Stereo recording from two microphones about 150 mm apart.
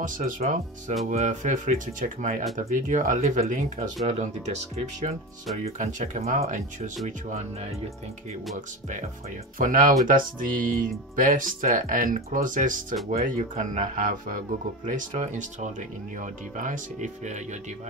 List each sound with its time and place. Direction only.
0.0 s speech: 55° right (ahead or behind)
9.6 s speech: 70° right (ahead or behind)